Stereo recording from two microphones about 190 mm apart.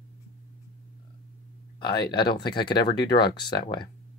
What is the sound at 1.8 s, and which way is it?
Speech, 25° left (ahead or behind).